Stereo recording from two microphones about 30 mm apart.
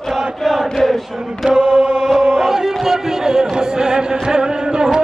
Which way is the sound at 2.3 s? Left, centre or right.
Centre.